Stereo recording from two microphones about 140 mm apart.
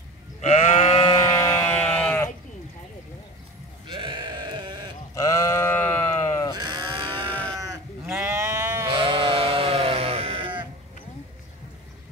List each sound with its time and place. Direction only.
0.4 s sheep: 50° left (ahead or behind)
1.2 s sheep: 20° left (ahead or behind)
3.8 s sheep: 35° right (ahead or behind)
5.1 s sheep: 20° left (ahead or behind)
6.5 s livestock: 30° right (ahead or behind)
8.1 s sheep: 15° right (ahead or behind)
8.8 s sheep: 35° right (ahead or behind)